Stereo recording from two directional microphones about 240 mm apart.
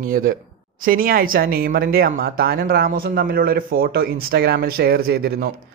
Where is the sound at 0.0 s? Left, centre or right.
Right.